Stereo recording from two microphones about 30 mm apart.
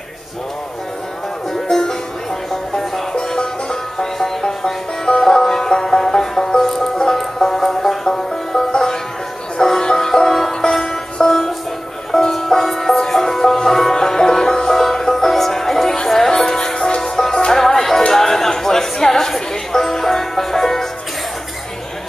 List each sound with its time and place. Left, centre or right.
1.5 s music: centre
16.6 s music: left
17.5 s music: centre